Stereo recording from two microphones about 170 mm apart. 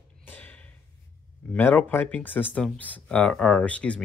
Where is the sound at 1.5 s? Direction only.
10° left (ahead or behind).